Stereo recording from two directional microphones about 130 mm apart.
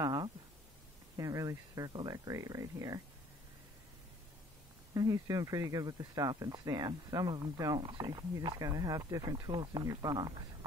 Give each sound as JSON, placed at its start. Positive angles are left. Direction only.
{"t": 0.0, "sound": "a sound", "side_deg": -30}
{"t": 1.1, "sound": "speech", "side_deg": -25}
{"t": 4.9, "sound": "speech", "side_deg": -30}